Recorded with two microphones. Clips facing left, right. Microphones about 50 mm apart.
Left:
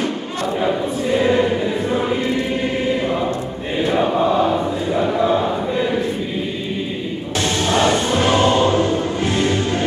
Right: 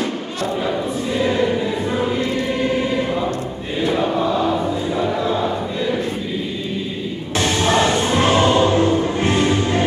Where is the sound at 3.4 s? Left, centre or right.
Left.